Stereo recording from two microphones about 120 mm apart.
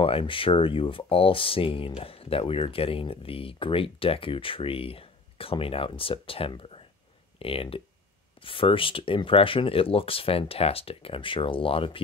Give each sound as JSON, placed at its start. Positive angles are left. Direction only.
{"t": 0.0, "sound": "speech", "side_deg": 50}